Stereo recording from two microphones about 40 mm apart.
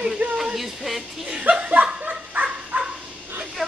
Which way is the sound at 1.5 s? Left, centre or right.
Right.